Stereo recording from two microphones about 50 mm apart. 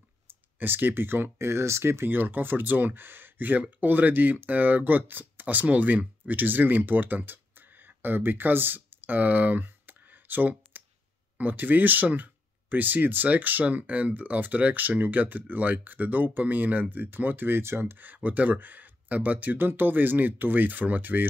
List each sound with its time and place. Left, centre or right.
0.3 s speech: right
2.0 s speech: right